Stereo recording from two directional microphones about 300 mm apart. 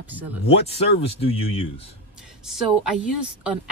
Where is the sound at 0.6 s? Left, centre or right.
Centre.